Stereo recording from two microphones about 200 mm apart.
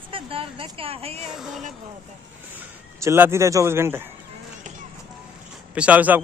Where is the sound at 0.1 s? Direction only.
25° right (ahead or behind).